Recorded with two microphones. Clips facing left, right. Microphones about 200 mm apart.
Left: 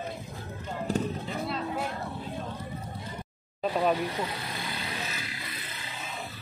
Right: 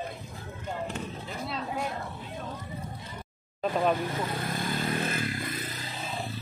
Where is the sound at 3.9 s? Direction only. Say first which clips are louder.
Even; 50° right (ahead or behind).